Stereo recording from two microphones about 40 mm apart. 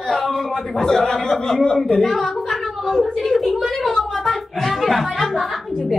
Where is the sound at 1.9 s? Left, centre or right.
Centre.